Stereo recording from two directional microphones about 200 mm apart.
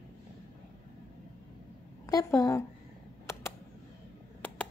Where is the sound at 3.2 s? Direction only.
15° left (ahead or behind).